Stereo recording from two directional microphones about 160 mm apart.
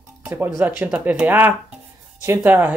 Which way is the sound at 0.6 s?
15° right (ahead or behind).